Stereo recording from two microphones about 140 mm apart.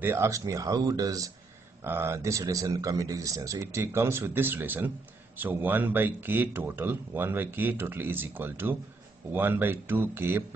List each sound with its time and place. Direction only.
0.0 s speech: 15° right (ahead or behind)